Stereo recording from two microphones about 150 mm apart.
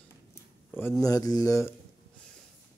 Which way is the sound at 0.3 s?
15° left (ahead or behind).